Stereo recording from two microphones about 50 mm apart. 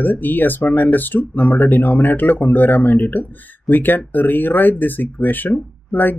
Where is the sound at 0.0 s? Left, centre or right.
Left.